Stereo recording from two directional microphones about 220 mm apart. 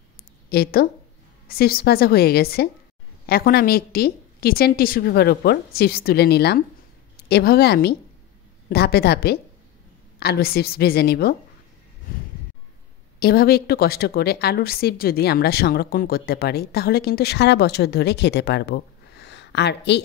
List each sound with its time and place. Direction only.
0.5 s a woman's voice: 45° left (ahead or behind)
13.2 s a woman's voice: 45° left (ahead or behind)